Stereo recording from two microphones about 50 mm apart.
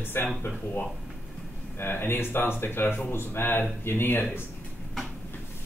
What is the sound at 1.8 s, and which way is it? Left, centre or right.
Speech, left.